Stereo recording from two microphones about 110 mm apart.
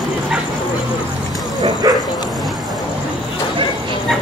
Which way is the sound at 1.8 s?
35° right (ahead or behind).